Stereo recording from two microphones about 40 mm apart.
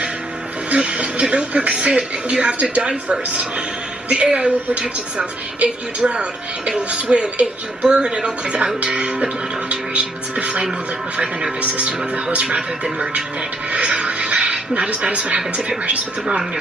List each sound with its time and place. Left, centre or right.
0.7 s music: right
1.3 s a woman's voice: right
11.6 s a woman's voice: right
13.7 s a woman's voice: right